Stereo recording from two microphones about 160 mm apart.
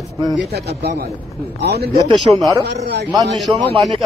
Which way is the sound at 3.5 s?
30° right (ahead or behind).